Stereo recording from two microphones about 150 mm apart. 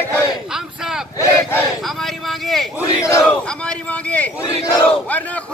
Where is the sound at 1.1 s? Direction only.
15° left (ahead or behind).